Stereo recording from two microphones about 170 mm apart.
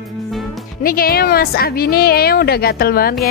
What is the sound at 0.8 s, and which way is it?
A woman's voice, 60° left (ahead or behind).